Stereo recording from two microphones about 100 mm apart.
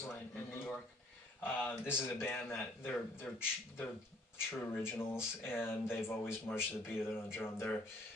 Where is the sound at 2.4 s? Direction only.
25° left (ahead or behind).